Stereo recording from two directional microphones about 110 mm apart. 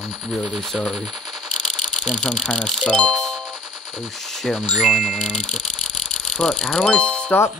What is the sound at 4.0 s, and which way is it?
Speech, 5° left (ahead or behind).